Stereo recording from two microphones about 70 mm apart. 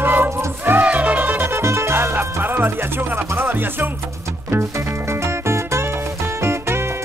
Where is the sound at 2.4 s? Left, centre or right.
Right.